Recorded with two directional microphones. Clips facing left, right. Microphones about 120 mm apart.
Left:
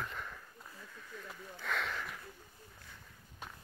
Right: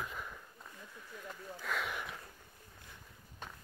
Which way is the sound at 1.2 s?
5° right (ahead or behind).